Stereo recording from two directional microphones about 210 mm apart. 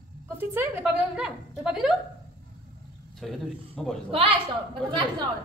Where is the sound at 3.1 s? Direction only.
Centre (ahead or behind).